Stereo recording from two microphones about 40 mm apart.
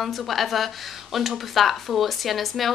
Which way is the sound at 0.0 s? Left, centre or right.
Centre.